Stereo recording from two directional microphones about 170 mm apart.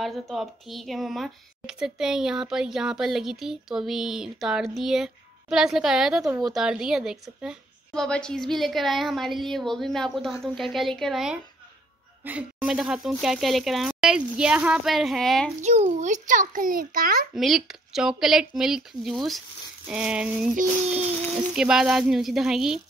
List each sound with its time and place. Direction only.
0.0 s speech: centre (ahead or behind)
15.6 s a child's voice: 40° right (ahead or behind); by 17.3 s 60° right (ahead or behind)
17.4 s speech: centre (ahead or behind)